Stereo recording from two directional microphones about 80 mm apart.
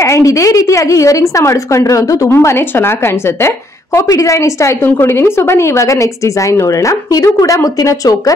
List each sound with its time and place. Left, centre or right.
0.0 s a woman's voice: left
7.2 s speech: left